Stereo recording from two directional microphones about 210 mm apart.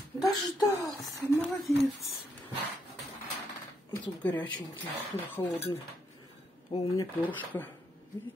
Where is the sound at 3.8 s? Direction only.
20° left (ahead or behind).